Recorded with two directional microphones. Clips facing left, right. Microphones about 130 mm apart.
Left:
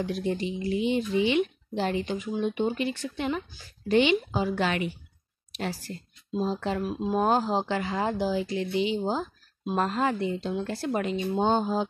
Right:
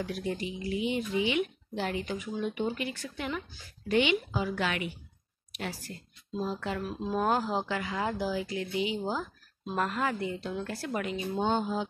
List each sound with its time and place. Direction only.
0.0 s speech: 25° left (ahead or behind)